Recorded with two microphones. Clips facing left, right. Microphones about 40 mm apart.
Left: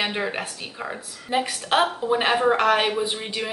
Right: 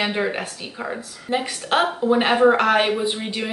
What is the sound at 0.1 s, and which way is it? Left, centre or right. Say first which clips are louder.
Speech: right 3 dB; centre.